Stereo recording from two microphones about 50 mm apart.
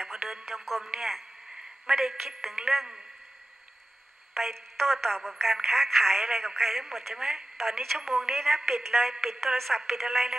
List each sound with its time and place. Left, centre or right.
0.0 s music: centre
0.5 s a man's voice: centre
4.3 s a woman's voice: centre